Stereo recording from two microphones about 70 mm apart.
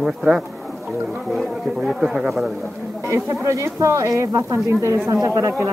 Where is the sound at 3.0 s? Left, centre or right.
Right.